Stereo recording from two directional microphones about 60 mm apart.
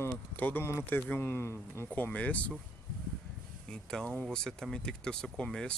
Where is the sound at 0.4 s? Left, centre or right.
Left.